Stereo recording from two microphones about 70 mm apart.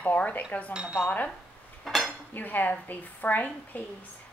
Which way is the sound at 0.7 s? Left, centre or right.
Centre.